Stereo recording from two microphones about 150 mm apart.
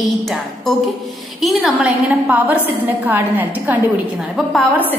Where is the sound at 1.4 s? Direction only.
5° right (ahead or behind).